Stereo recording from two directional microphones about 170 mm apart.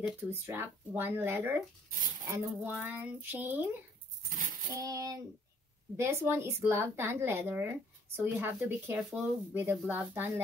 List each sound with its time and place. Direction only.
0.0 s a woman's voice: 15° right (ahead or behind)
4.7 s child singing: 20° right (ahead or behind)
5.9 s a woman's voice: 15° right (ahead or behind)